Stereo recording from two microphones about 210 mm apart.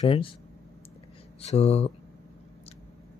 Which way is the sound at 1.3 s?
30° left (ahead or behind).